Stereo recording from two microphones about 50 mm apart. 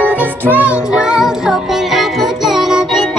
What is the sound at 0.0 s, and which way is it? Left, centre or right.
Music, right.